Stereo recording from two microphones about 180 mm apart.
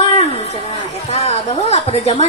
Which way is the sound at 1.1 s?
35° left (ahead or behind).